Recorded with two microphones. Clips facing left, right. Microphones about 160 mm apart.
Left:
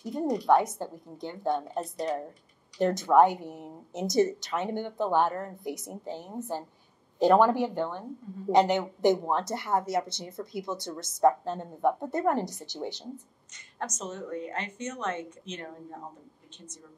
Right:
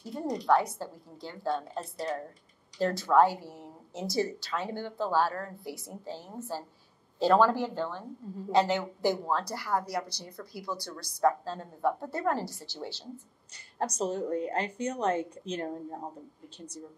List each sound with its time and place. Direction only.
0.0 s a woman's voice: 20° left (ahead or behind)
13.7 s speech: 35° right (ahead or behind)